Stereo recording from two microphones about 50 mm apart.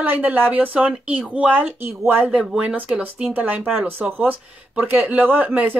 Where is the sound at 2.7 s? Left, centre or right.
Right.